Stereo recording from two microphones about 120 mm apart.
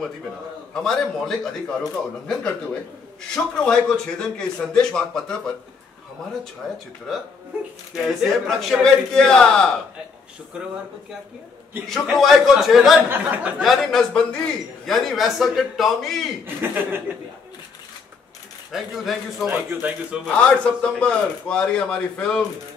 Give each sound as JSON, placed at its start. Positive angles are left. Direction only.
{"t": 0.7, "sound": "speech", "side_deg": 5}
{"t": 3.3, "sound": "a man's voice", "side_deg": 5}
{"t": 6.6, "sound": "speech", "side_deg": 0}
{"t": 7.9, "sound": "speech", "side_deg": 0}
{"t": 11.9, "sound": "speech", "side_deg": 0}
{"t": 13.1, "sound": "a man's voice", "side_deg": -15}
{"t": 13.6, "sound": "speech", "side_deg": 0}
{"t": 16.4, "sound": "a man's voice", "side_deg": -20}
{"t": 18.7, "sound": "a man's voice", "side_deg": -5}
{"t": 20.2, "sound": "a man's voice", "side_deg": 10}